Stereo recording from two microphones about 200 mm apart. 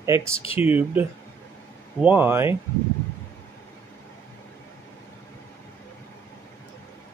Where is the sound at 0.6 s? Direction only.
10° right (ahead or behind).